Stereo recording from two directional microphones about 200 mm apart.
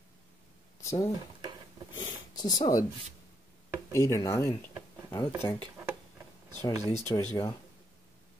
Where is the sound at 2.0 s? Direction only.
20° left (ahead or behind).